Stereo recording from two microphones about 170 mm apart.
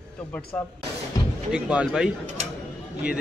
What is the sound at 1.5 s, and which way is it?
Speech, 5° right (ahead or behind).